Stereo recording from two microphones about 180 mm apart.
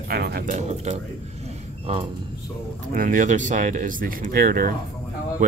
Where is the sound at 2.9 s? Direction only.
45° right (ahead or behind).